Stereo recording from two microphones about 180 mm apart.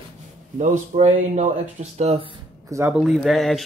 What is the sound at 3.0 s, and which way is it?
Speech, centre (ahead or behind).